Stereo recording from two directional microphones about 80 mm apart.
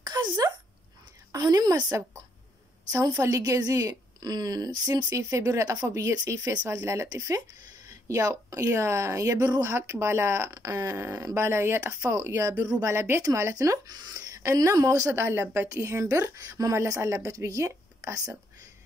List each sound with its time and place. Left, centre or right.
0.0 s a woman's voice: right
2.9 s a woman's voice: right
5.5 s speech: right
6.1 s a woman's voice: right
6.7 s a woman's voice: right
8.6 s speech: right
10.5 s a woman's voice: right
13.9 s a sound: right
14.5 s speech: right
15.4 s a woman's voice: right
15.7 s speech: right